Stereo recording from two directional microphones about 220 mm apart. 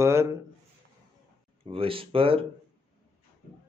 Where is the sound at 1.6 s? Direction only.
25° right (ahead or behind).